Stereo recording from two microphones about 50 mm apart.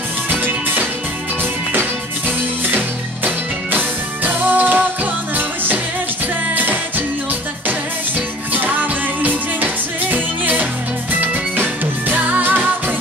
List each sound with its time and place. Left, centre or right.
0.3 s music: right
8.5 s music: right